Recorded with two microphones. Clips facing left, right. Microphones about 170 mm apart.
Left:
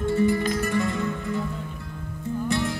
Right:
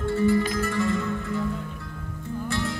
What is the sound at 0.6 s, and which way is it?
Flamenco, 15° left (ahead or behind).